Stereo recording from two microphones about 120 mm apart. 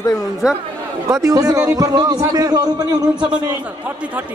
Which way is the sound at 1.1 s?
25° right (ahead or behind).